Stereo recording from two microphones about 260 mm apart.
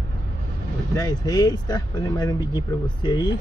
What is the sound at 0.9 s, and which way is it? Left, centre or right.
Speech, centre.